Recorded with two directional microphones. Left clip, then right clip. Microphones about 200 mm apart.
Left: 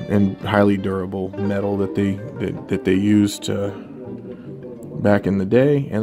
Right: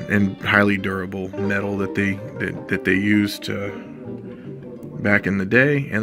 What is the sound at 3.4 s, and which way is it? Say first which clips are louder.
Speech: left 3 dB; centre (ahead or behind).